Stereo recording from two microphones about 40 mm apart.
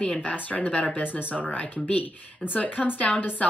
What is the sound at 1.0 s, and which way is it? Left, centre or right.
Speech, left.